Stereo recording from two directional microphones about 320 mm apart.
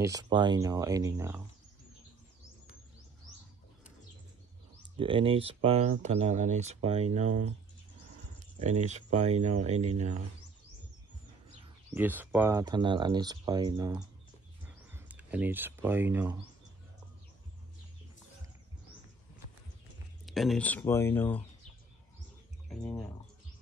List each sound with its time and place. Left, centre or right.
0.0 s speech: centre
4.9 s speech: centre
8.5 s speech: right
11.9 s speech: centre
20.2 s speech: centre
22.7 s speech: centre